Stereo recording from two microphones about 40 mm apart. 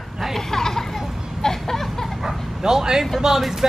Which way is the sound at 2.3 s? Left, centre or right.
Centre.